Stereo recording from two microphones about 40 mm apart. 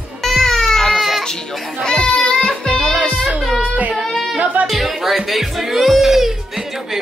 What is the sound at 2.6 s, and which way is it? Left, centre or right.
Music, centre.